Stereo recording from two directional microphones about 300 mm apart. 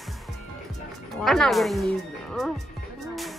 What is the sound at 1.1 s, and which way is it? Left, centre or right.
Speech, centre.